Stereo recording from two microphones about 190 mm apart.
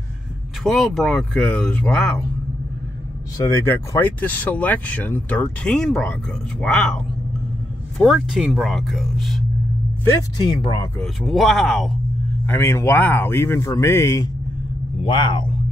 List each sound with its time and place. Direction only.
0.7 s speech: centre (ahead or behind)
3.3 s speech: 15° left (ahead or behind)
8.0 s speech: centre (ahead or behind)
10.0 s speech: 20° left (ahead or behind)
11.0 s speech: centre (ahead or behind)
12.4 s speech: 10° left (ahead or behind)